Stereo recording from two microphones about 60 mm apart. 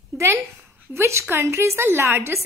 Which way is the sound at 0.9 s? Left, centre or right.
Right.